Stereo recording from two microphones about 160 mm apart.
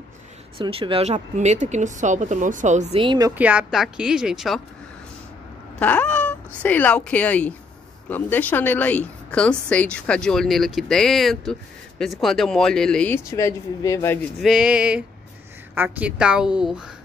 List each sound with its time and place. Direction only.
0.6 s speech: 35° right (ahead or behind)
3.0 s a woman's voice: 25° right (ahead or behind)
3.3 s a woman's voice: 10° right (ahead or behind)
5.8 s a woman's voice: 10° left (ahead or behind)
13.2 s speech: 20° left (ahead or behind)
14.4 s a sound: 5° right (ahead or behind)
15.7 s a woman's voice: 10° right (ahead or behind)